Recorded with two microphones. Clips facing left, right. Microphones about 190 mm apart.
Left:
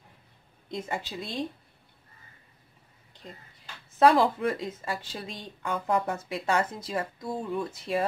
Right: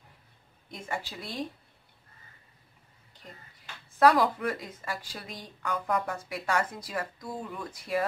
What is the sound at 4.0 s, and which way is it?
Speech, 25° left (ahead or behind).